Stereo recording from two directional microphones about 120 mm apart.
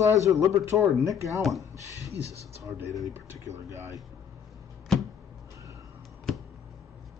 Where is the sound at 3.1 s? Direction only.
20° right (ahead or behind).